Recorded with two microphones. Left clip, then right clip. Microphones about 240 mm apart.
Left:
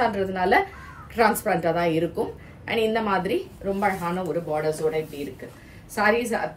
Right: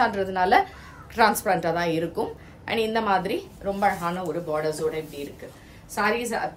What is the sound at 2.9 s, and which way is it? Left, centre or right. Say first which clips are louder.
Speech: even; centre.